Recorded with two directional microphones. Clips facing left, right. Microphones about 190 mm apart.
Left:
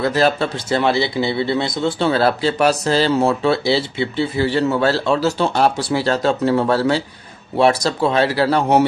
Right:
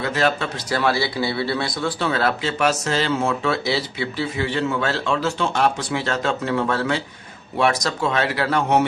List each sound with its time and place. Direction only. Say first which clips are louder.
0.0 s speech: left 5 dB; 35° left (ahead or behind)